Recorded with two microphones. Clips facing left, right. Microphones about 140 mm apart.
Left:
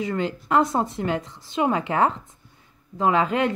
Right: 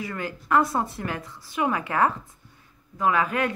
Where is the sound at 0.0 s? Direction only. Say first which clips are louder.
Left 6 dB; 20° left (ahead or behind).